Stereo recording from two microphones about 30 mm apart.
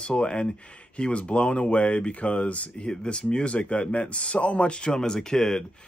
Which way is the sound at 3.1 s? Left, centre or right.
Left.